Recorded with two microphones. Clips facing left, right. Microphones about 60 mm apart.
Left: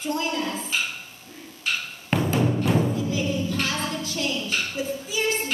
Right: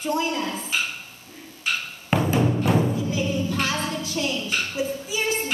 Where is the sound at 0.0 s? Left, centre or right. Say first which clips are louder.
Right 2 dB; centre.